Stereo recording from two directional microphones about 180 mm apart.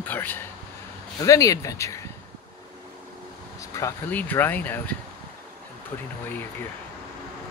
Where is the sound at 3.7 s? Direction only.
15° left (ahead or behind).